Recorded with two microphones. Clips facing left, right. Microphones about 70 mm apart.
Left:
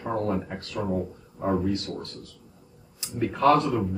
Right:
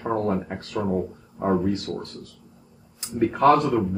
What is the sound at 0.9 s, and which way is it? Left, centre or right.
Speech, centre.